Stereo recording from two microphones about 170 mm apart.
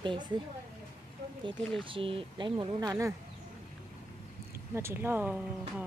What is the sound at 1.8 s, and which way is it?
Speech, 30° right (ahead or behind).